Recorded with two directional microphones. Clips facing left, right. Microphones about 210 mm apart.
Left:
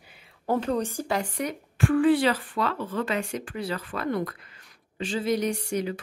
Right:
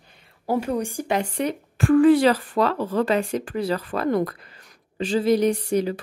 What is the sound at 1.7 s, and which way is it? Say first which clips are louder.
Speech: right 6 dB; 40° right (ahead or behind).